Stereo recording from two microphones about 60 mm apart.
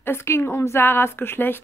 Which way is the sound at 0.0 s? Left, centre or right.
Left.